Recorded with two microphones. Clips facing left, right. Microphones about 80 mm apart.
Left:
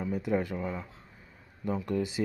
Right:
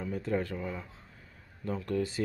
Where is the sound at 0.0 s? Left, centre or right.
Centre.